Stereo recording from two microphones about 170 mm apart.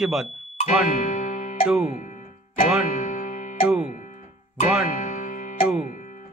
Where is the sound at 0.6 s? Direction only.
50° left (ahead or behind).